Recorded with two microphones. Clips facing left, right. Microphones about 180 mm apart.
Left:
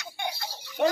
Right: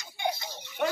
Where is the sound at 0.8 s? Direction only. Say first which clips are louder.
Left 5 dB; 35° left (ahead or behind).